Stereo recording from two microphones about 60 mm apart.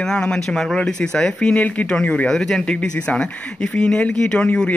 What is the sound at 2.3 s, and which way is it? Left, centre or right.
Speech, centre.